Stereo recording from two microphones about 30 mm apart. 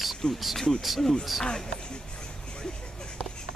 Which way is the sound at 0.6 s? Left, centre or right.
Centre.